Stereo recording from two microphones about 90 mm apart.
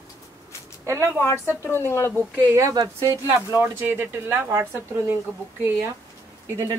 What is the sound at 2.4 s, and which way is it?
A woman's voice, 35° right (ahead or behind).